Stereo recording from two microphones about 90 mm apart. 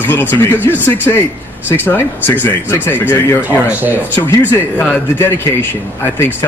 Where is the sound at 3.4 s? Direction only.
20° right (ahead or behind).